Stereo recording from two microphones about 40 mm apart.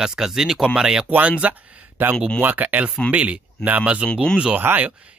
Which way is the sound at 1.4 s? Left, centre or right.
Right.